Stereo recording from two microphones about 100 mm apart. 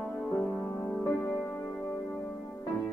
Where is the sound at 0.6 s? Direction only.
25° left (ahead or behind).